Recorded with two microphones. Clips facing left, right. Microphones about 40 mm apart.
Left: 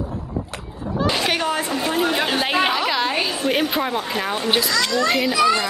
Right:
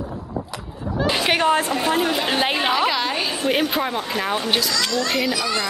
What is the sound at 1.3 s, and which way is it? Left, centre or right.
Speech, right.